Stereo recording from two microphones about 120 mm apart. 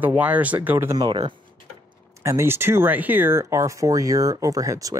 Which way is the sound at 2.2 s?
20° right (ahead or behind).